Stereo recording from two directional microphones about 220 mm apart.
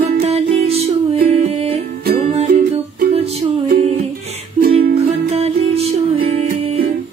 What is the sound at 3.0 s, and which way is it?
Music, 30° right (ahead or behind).